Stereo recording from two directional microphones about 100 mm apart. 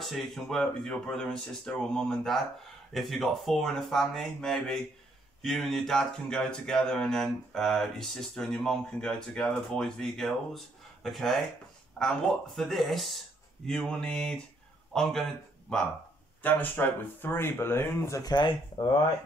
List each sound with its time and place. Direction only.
0.0 s speech: centre (ahead or behind)
13.7 s mantra: 5° left (ahead or behind)
14.9 s speech: 5° left (ahead or behind)
16.4 s speech: 15° left (ahead or behind)
18.3 s speech: 45° left (ahead or behind)